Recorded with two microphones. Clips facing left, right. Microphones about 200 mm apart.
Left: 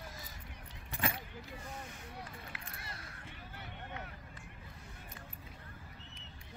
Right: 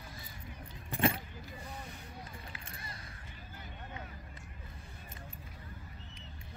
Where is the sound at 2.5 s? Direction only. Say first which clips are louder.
Even; 65° left (ahead or behind).